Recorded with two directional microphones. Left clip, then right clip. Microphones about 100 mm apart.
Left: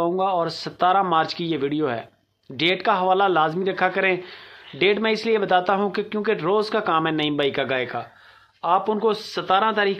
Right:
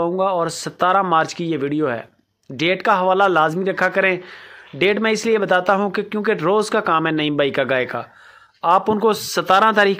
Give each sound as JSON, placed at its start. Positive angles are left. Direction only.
{"t": 0.0, "sound": "speech", "side_deg": -40}
{"t": 1.5, "sound": "speech", "side_deg": -25}
{"t": 2.5, "sound": "speech", "side_deg": -40}